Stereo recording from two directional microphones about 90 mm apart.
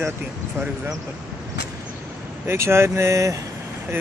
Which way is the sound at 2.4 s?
30° right (ahead or behind).